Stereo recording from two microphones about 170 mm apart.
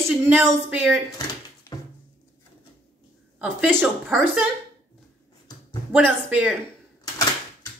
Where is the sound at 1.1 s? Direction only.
20° left (ahead or behind).